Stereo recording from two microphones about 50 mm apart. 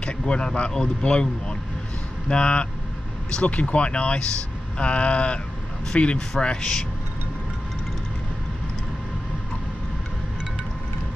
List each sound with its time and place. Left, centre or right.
0.0 s speech: centre